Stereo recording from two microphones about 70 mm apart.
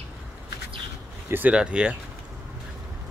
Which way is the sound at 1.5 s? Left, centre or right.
Centre.